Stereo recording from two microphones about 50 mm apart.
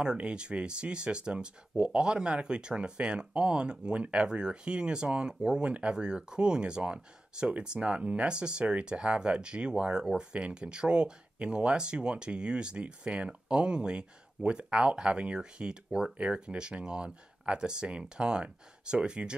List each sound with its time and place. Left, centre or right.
0.0 s speech: centre